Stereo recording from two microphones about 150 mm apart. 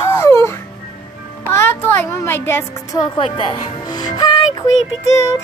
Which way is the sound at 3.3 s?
35° left (ahead or behind).